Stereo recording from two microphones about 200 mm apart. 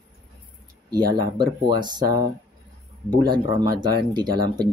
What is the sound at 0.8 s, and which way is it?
Speech, 20° right (ahead or behind).